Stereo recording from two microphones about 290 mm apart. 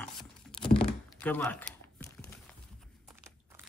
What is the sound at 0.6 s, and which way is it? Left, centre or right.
Computer keyboard, centre.